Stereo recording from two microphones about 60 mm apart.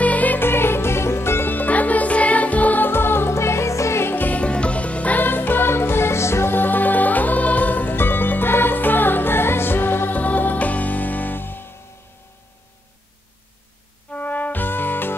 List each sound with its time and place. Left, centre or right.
0.0 s music: left
4.4 s music: centre; by 11.7 s left
14.1 s music: left